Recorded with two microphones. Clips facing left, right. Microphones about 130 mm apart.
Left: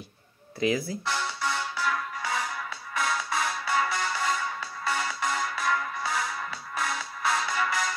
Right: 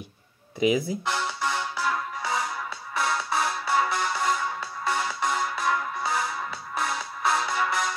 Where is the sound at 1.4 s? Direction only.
15° right (ahead or behind).